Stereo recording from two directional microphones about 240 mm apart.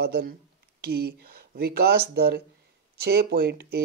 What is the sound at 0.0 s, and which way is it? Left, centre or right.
Speech, right.